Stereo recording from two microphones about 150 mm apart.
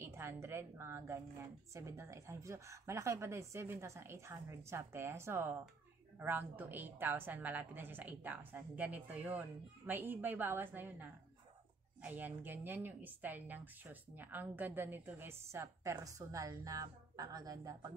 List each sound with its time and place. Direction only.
0.0 s a woman's voice: 15° right (ahead or behind)